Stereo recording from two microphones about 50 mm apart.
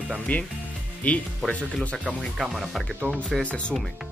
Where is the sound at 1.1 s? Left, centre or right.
Left.